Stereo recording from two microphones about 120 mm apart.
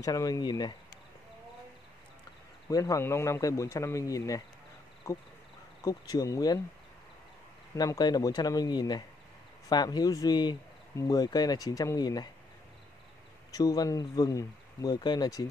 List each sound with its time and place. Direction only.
0.0 s speech: 30° left (ahead or behind)
2.7 s speech: 25° left (ahead or behind)
7.7 s speech: 30° left (ahead or behind)
13.5 s speech: 30° left (ahead or behind)